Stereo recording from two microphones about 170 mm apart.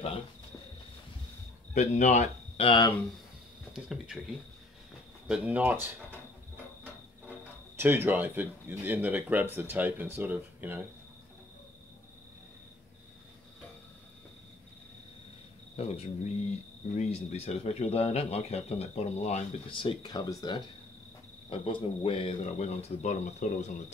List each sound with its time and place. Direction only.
1.7 s speech: 45° left (ahead or behind)
3.7 s speech: 5° right (ahead or behind)
5.3 s speech: 10° right (ahead or behind)
15.7 s speech: 35° left (ahead or behind)